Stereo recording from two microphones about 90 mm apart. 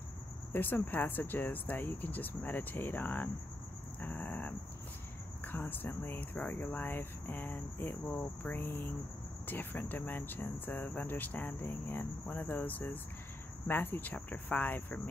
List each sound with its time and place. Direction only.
0.5 s speech: 20° left (ahead or behind)
4.0 s vehicle: 20° left (ahead or behind)
5.4 s speech: 20° left (ahead or behind)